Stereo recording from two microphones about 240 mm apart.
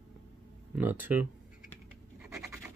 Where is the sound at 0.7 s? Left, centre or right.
Centre.